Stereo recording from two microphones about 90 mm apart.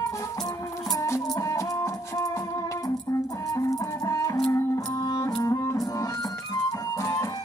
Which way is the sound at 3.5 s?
35° left (ahead or behind).